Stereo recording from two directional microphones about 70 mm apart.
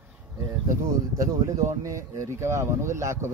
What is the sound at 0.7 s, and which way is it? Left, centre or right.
Speech, right.